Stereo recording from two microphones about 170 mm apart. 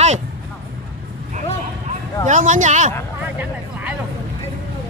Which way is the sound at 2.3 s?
45° right (ahead or behind).